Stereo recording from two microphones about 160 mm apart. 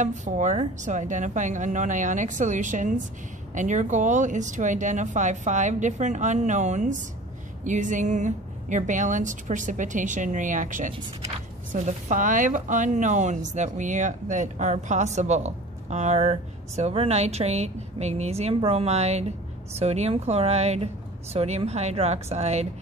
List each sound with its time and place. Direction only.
0.0 s a woman's voice: 50° right (ahead or behind)